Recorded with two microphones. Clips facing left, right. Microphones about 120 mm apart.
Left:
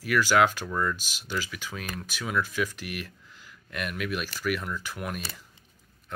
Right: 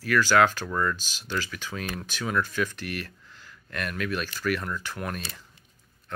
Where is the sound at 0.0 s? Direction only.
15° left (ahead or behind).